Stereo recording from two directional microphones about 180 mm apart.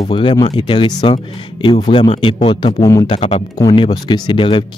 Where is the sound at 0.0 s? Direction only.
30° left (ahead or behind).